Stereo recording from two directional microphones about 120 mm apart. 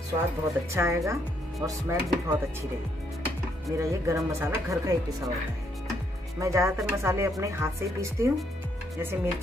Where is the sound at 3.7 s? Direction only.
25° right (ahead or behind).